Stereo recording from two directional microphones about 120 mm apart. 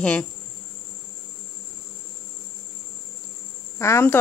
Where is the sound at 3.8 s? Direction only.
20° left (ahead or behind).